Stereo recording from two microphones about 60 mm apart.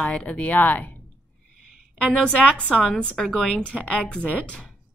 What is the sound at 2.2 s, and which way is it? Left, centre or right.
A woman's voice, centre.